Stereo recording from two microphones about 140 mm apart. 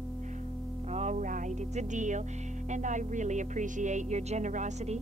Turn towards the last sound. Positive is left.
turn(degrees=-55)  # may be behind; listen again after turning